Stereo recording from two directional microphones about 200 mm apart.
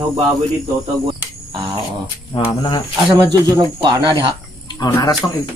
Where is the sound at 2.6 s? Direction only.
25° left (ahead or behind).